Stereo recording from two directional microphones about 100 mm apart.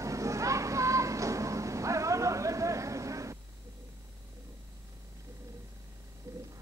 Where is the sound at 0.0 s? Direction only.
30° right (ahead or behind).